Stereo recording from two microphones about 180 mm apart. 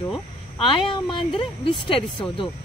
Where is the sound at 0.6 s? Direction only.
30° left (ahead or behind).